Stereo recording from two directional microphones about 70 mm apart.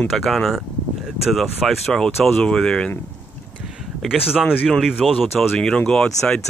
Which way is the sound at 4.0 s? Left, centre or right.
Centre.